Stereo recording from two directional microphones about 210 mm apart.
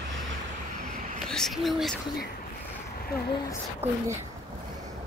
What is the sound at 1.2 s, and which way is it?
Speech, centre (ahead or behind).